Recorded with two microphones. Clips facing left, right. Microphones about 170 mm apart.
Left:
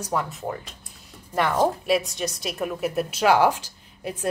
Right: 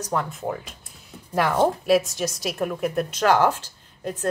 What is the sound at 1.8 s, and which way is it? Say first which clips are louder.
A woman's voice: right 3 dB; centre (ahead or behind).